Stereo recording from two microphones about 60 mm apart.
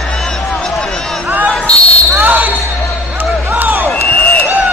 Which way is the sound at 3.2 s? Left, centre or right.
Right.